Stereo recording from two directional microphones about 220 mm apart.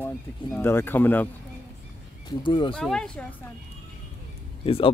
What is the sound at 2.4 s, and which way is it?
Speech, 20° left (ahead or behind).